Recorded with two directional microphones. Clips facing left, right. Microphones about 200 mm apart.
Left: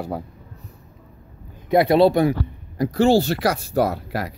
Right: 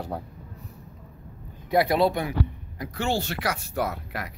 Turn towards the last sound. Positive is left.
turn(degrees=35)  # may be behind; listen again after turning